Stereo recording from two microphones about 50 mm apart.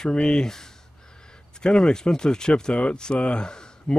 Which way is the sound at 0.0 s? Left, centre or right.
Centre.